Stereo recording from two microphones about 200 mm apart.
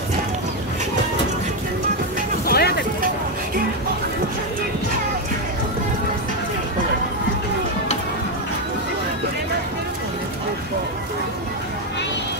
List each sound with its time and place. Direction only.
2.4 s vehicle: 50° left (ahead or behind)